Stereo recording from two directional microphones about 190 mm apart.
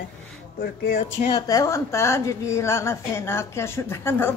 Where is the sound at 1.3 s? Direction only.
20° left (ahead or behind).